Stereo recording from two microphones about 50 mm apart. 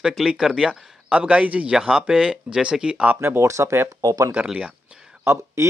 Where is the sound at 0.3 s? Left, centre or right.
Centre.